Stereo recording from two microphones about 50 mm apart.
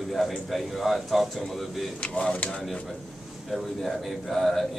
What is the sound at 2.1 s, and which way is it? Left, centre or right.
Speech, centre.